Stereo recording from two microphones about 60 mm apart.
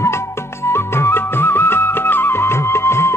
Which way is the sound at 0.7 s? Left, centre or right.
Left.